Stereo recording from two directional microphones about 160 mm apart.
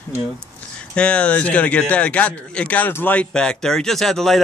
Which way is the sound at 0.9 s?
5° left (ahead or behind).